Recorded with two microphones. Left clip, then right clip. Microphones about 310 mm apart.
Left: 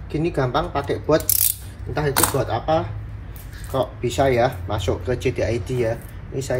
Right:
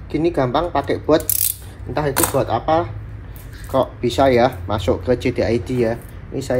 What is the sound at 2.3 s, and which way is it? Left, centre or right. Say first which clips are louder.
Speech: right 4 dB; right.